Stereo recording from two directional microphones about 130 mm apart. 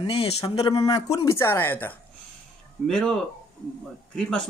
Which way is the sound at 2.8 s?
5° left (ahead or behind).